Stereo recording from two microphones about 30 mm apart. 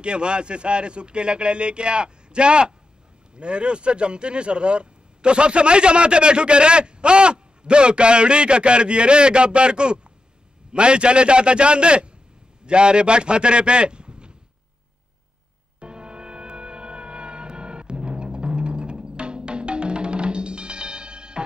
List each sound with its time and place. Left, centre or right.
0.0 s a man's voice: right
15.8 s music: right